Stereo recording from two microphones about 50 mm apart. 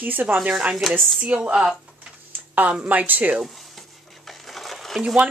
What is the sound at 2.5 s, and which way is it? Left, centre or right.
Speech, right.